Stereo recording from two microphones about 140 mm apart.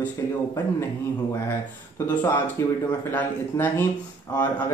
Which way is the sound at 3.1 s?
15° left (ahead or behind).